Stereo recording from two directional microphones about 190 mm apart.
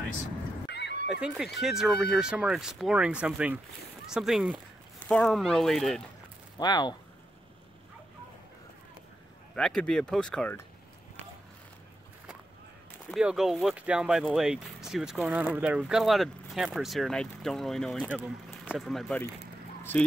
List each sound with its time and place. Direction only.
0.7 s a sound: 60° left (ahead or behind)
1.2 s speech: centre (ahead or behind)
6.6 s speech: 20° left (ahead or behind)
9.6 s speech: 5° left (ahead or behind)
13.1 s speech: 5° right (ahead or behind)